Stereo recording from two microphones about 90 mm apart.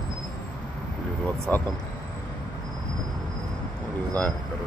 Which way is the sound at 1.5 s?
20° left (ahead or behind).